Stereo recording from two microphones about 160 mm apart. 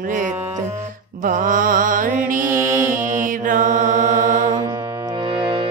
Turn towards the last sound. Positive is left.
turn(degrees=-55)  # may be behind; listen again after turning